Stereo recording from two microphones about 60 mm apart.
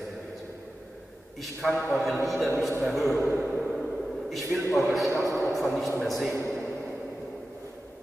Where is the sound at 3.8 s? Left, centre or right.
Centre.